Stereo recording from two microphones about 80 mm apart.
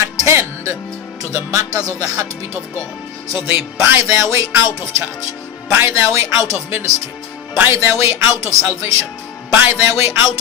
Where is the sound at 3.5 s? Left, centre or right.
Right.